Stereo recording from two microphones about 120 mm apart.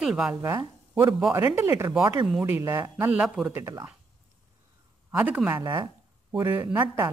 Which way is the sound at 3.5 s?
25° right (ahead or behind).